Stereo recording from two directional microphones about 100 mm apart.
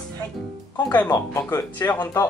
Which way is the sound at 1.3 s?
20° left (ahead or behind).